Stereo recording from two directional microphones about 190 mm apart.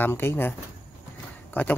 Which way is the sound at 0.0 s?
10° left (ahead or behind).